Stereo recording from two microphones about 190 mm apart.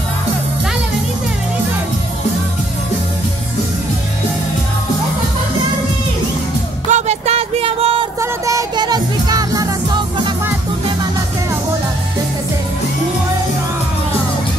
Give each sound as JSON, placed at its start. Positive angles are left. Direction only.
{"t": 6.9, "sound": "music", "side_deg": -35}
{"t": 8.2, "sound": "music", "side_deg": -15}